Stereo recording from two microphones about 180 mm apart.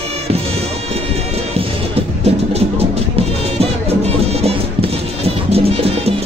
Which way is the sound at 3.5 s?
35° right (ahead or behind).